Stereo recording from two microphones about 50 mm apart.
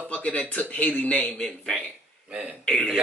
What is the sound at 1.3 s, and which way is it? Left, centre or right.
Speech, centre.